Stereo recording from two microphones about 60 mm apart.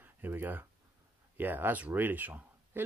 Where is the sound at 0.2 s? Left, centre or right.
Right.